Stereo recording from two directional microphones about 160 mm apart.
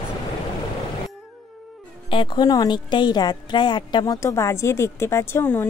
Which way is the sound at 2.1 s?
30° left (ahead or behind).